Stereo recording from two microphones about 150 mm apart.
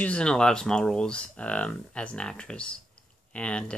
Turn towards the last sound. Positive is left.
turn(degrees=5)  # may be behind; listen again after turning